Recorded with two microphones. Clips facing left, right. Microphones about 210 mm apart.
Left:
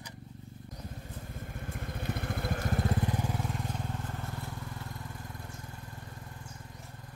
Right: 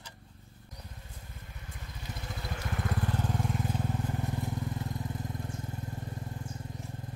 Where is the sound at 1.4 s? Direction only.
50° left (ahead or behind).